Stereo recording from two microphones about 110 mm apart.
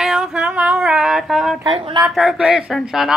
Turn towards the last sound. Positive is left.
turn(degrees=-5)  # may be behind; listen again after turning